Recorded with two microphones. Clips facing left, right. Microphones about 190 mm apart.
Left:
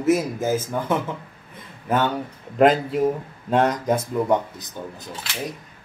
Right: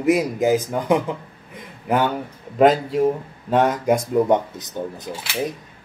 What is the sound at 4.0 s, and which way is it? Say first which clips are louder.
Speech: right 3 dB; 20° right (ahead or behind).